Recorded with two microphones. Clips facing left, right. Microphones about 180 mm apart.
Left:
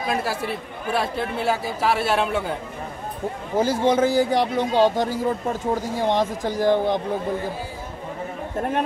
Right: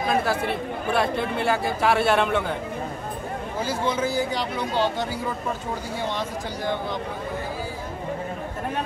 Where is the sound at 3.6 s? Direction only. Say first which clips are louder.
Left 7 dB; 45° left (ahead or behind).